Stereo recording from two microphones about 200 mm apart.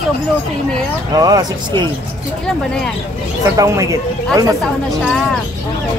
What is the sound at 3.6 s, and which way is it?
Speech, 15° right (ahead or behind).